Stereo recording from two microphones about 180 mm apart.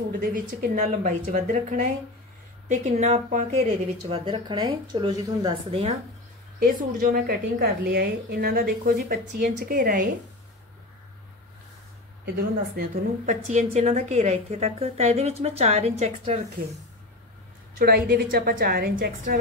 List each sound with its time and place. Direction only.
0.2 s speech: 55° right (ahead or behind)
4.1 s speech: 25° right (ahead or behind)
6.6 s a woman's voice: 55° right (ahead or behind)
12.4 s a woman's voice: 45° right (ahead or behind)
17.7 s a woman's voice: 55° right (ahead or behind)